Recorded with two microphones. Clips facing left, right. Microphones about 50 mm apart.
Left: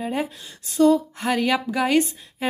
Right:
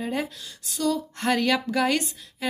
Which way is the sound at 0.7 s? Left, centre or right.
Left.